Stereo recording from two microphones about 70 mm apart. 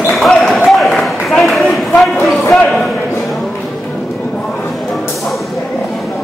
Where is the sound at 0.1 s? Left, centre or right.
Centre.